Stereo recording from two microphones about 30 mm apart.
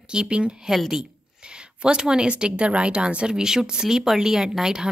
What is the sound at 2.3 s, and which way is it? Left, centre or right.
A woman's voice, right.